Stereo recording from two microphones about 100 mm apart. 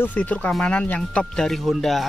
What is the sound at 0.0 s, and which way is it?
Speech, 15° left (ahead or behind).